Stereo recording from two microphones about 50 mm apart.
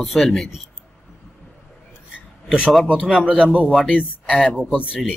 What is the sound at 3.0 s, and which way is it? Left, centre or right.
Speech, centre.